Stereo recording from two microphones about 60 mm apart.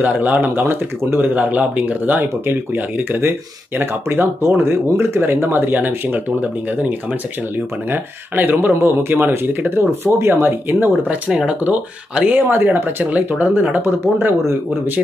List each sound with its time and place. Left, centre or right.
0.0 s speech: right
11.1 s speech: centre
13.8 s speech: right